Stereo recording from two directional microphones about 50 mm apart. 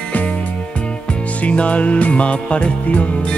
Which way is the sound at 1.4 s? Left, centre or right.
Left.